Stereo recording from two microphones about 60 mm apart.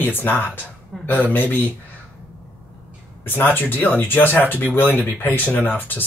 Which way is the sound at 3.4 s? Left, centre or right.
Left.